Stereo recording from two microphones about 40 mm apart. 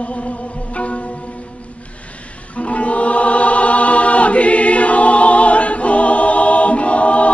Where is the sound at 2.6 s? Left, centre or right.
Left.